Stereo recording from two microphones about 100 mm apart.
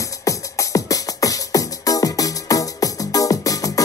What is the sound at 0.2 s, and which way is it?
Music, 35° left (ahead or behind).